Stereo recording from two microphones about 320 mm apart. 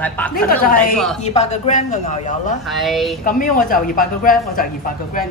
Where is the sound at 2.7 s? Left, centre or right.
Centre.